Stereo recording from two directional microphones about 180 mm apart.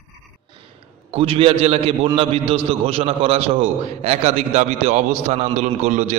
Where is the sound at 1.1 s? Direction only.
30° right (ahead or behind).